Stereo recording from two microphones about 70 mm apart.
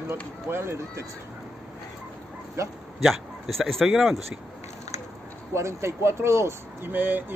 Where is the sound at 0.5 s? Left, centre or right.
Right.